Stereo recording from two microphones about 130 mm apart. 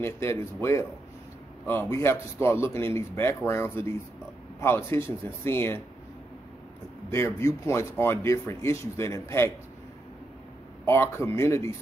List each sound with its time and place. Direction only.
0.0 s speech: 20° left (ahead or behind)
7.1 s speech: 20° left (ahead or behind)
10.9 s speech: 20° left (ahead or behind)